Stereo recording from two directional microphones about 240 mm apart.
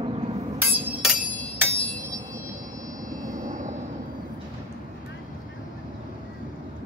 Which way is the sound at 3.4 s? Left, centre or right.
Right.